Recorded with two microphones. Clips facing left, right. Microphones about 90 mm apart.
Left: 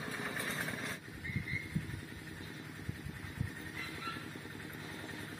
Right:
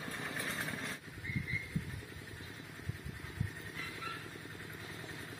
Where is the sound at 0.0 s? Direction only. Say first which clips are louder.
Left 1 dB; centre (ahead or behind).